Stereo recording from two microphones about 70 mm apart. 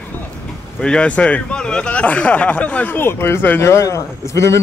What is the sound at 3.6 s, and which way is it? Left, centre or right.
Speech, left.